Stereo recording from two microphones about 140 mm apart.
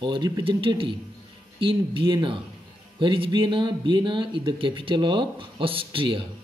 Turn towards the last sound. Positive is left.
turn(degrees=-40)  # may be behind; listen again after turning